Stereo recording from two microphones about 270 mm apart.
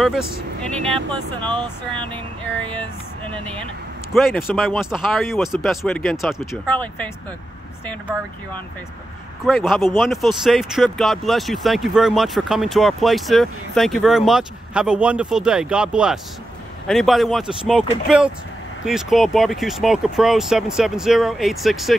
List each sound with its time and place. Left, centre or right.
0.7 s speech: centre
4.1 s speech: centre
9.5 s speech: centre